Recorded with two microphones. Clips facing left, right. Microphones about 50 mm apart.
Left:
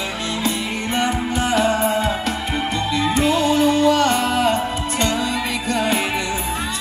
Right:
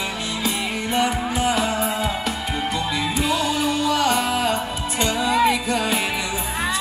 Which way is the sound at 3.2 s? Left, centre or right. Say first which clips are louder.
Left 4 dB; left.